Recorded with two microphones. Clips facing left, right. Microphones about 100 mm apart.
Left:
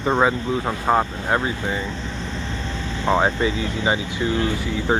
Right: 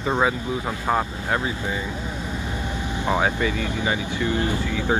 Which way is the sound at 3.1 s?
20° left (ahead or behind).